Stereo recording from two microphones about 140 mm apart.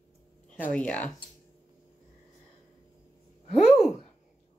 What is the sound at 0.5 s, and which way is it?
Speech, 10° left (ahead or behind).